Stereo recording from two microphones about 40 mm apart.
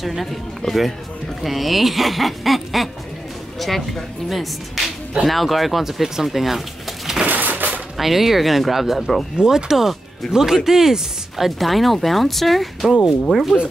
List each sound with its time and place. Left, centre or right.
0.0 s speech: centre
7.2 s crushing: right
8.0 s speech: centre
9.4 s speech: centre